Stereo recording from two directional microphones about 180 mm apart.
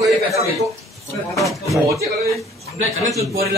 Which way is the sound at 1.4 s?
Centre (ahead or behind).